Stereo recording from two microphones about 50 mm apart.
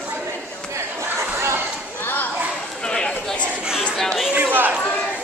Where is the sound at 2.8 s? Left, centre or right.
Centre.